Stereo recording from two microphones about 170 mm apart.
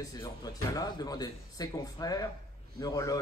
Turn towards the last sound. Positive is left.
turn(degrees=20)  # may be behind; listen again after turning